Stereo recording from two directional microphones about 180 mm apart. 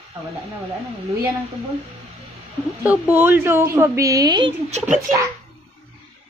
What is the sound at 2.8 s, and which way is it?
A woman's voice, 10° right (ahead or behind).